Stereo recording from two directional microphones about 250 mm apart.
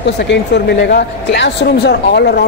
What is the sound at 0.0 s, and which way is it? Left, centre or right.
A woman's voice, left.